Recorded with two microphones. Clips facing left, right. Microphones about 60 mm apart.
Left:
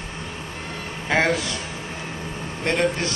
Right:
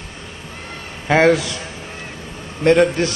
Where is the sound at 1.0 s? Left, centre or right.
Right.